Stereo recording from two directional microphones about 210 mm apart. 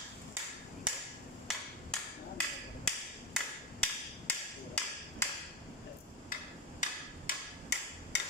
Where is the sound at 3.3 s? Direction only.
5° left (ahead or behind).